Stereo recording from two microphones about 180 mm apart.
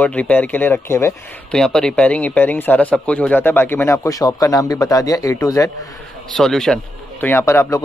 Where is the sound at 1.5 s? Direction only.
5° left (ahead or behind).